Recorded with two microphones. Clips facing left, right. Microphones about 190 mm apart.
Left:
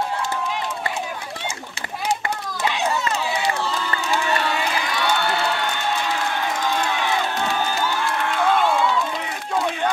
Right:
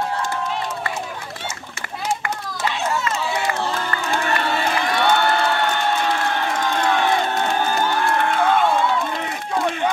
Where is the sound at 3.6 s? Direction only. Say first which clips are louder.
Right 1 dB; 55° right (ahead or behind).